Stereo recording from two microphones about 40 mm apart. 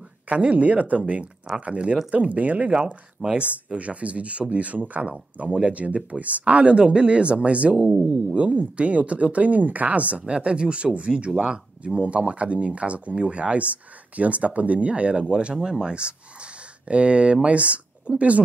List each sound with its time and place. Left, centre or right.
0.3 s speech: right
2.7 s speech: right
3.3 s speech: right
15.5 s speech: centre
15.8 s speech: right